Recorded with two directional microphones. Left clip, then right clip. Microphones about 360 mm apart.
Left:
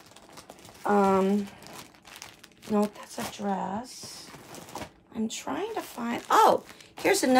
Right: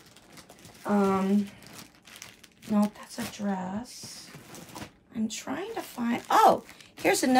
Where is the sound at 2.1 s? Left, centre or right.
Centre.